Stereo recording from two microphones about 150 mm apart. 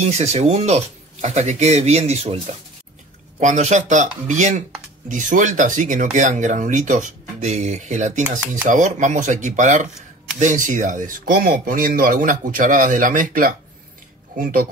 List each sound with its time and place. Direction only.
0.0 s speech: 50° right (ahead or behind)
3.3 s speech: 50° right (ahead or behind)